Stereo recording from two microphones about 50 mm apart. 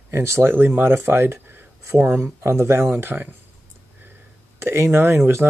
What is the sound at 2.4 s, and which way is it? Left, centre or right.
Speech, right.